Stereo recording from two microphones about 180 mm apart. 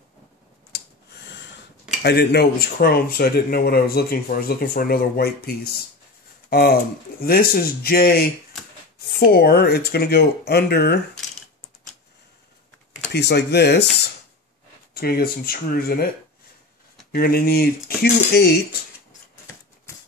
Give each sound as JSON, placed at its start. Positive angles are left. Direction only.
{"t": 2.0, "sound": "speech", "side_deg": 65}
{"t": 13.1, "sound": "speech", "side_deg": 65}
{"t": 15.0, "sound": "speech", "side_deg": 55}
{"t": 17.1, "sound": "speech", "side_deg": 55}